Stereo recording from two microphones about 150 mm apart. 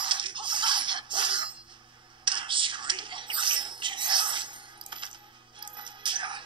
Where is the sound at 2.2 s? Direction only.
35° right (ahead or behind).